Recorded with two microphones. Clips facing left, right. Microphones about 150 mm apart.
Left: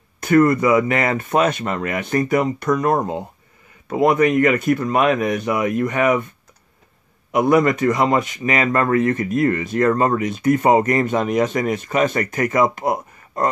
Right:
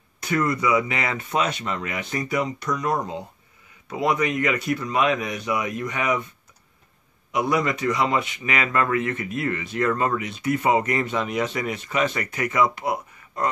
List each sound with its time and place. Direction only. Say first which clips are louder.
0.2 s speech: left 9 dB; 50° left (ahead or behind)
7.3 s speech: left 7 dB; 50° left (ahead or behind)